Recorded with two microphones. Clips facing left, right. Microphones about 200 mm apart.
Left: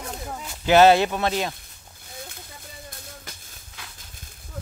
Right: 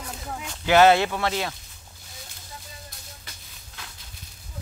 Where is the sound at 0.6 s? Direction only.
20° left (ahead or behind).